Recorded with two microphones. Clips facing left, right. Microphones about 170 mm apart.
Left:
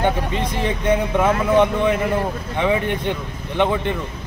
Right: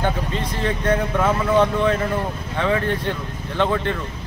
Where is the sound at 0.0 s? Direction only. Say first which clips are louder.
Left 3 dB; 15° left (ahead or behind).